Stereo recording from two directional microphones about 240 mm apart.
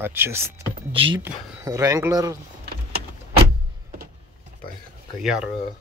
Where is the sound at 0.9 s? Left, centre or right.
Right.